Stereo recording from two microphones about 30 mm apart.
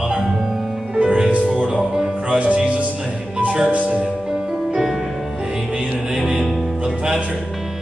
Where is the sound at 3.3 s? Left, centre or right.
Right.